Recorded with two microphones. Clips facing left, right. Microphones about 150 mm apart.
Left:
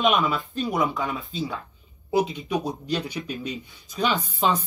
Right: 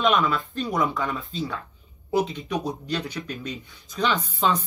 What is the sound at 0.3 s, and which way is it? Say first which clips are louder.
Speech: even; centre (ahead or behind).